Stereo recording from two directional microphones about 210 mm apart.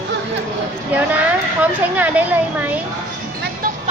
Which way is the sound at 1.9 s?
5° right (ahead or behind).